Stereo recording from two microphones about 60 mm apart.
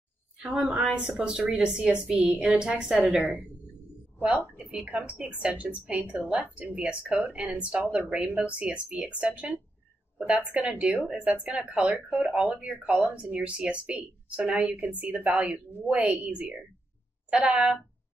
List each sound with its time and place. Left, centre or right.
0.5 s a woman's voice: right
4.2 s a woman's voice: centre